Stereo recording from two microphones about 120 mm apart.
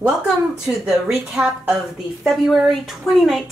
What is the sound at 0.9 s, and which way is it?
A woman's voice, 5° right (ahead or behind).